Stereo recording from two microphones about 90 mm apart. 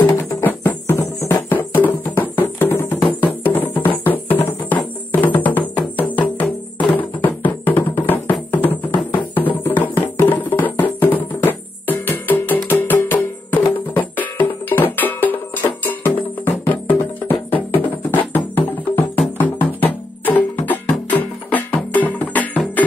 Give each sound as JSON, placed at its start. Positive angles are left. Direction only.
{"t": 0.0, "sound": "music", "side_deg": 20}